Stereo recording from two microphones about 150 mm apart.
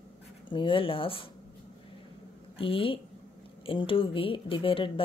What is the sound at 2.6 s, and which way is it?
Speech, 35° left (ahead or behind).